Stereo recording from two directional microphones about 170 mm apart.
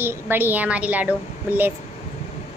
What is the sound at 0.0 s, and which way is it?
A woman's voice, 15° right (ahead or behind).